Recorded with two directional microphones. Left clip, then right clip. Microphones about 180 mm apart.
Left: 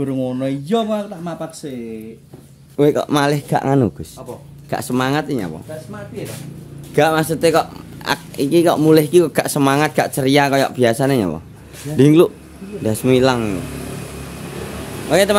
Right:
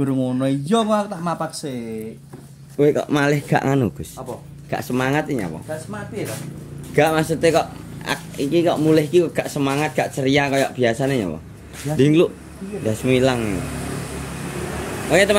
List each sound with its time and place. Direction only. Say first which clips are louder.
0.0 s speech: even; centre (ahead or behind)
1.2 s speech: right 3 dB; 30° right (ahead or behind)
2.8 s speech: left 2 dB; 25° left (ahead or behind)
4.6 s speech: left 2 dB; 30° left (ahead or behind)
7.0 s speech: left 2 dB; 25° left (ahead or behind)
15.0 s speech: left 1 dB; 20° left (ahead or behind)